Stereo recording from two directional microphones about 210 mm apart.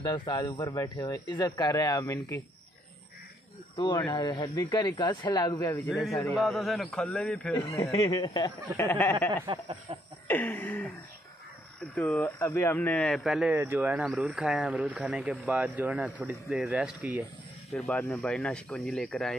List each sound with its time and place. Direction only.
0.1 s speech: 20° left (ahead or behind)
3.7 s speech: 20° left (ahead or behind)
5.9 s speech: centre (ahead or behind)
9.5 s snicker: 30° right (ahead or behind)
10.2 s speech: 10° left (ahead or behind)
11.9 s speech: 5° left (ahead or behind)
17.7 s speech: 5° left (ahead or behind)